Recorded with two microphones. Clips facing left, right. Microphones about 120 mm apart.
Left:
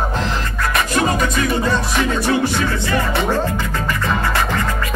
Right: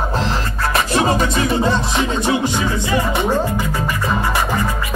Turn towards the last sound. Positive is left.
turn(degrees=-15)  # may be behind; listen again after turning